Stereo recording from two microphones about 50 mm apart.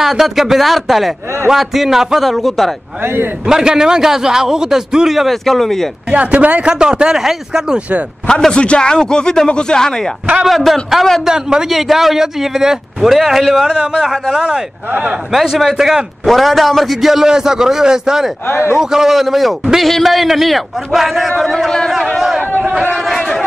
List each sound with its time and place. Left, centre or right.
0.0 s a man's voice: centre
3.0 s a man's voice: right
3.4 s a man's voice: centre
6.0 s speech: right
6.7 s a man's voice: centre
8.5 s speech: left
10.4 s a man's voice: centre
11.2 s a man's voice: centre
11.7 s a man's voice: centre
15.4 s a man's voice: centre
23.0 s a sound: centre